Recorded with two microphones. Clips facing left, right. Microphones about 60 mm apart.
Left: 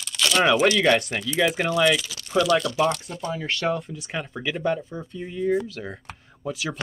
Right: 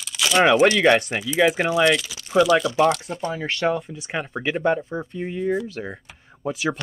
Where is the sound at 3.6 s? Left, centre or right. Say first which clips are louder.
Right 4 dB; centre.